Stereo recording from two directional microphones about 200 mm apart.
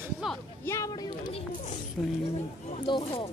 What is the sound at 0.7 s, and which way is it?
Speech, 15° left (ahead or behind).